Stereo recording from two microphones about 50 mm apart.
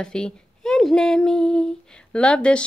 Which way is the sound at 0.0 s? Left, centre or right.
Centre.